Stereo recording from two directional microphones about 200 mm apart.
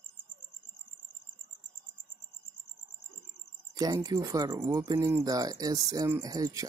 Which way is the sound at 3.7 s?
20° right (ahead or behind).